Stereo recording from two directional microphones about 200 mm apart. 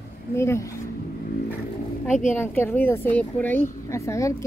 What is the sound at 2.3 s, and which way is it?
A woman's voice, 10° left (ahead or behind).